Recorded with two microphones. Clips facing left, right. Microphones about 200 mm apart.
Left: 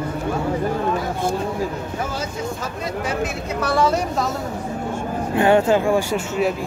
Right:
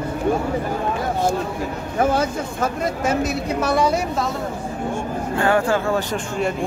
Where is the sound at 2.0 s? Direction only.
55° right (ahead or behind).